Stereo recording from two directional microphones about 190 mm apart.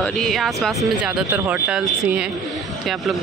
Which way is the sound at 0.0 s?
Centre (ahead or behind).